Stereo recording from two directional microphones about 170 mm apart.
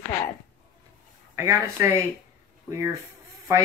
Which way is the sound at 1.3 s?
20° right (ahead or behind).